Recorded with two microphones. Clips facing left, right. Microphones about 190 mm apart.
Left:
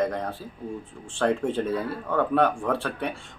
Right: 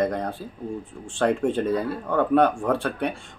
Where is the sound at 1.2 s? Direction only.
15° right (ahead or behind).